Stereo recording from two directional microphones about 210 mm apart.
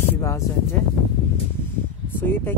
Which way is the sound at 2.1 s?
10° left (ahead or behind).